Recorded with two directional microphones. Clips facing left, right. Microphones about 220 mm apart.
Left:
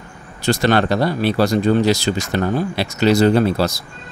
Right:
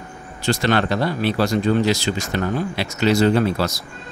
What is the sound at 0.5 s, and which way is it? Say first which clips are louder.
Speech: left 3 dB; 40° left (ahead or behind).